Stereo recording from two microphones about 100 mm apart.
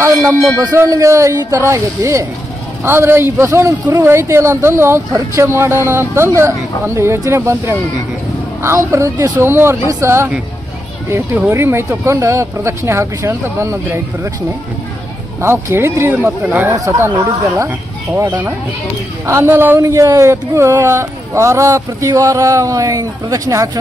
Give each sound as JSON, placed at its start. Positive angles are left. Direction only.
{"t": 0.0, "sound": "music", "side_deg": -30}
{"t": 0.6, "sound": "speech", "side_deg": -35}
{"t": 15.4, "sound": "speech", "side_deg": -25}
{"t": 16.7, "sound": "speech", "side_deg": -30}
{"t": 17.6, "sound": "speech", "side_deg": -20}
{"t": 19.8, "sound": "speech", "side_deg": -35}